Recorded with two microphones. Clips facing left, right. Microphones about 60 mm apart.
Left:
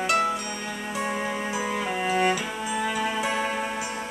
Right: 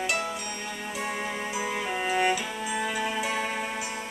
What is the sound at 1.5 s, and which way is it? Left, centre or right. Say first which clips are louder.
Music: even; centre.